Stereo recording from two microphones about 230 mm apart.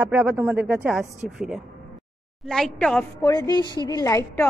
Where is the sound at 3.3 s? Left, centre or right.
Centre.